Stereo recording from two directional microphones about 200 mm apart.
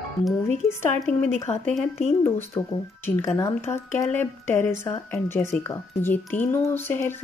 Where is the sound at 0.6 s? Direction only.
10° left (ahead or behind).